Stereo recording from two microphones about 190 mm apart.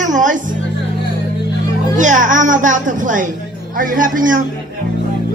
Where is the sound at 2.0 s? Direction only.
40° right (ahead or behind).